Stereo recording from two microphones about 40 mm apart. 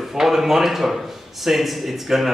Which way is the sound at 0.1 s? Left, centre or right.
Centre.